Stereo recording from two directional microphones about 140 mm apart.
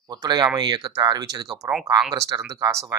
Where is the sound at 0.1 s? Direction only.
30° right (ahead or behind).